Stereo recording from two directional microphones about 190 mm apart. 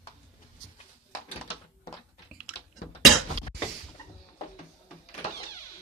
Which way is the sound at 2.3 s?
Centre (ahead or behind).